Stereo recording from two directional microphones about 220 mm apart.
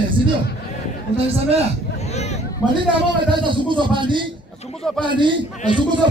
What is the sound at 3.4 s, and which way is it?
A man's voice, 20° right (ahead or behind).